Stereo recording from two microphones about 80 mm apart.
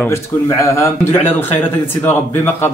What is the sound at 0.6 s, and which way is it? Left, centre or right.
Speech, left.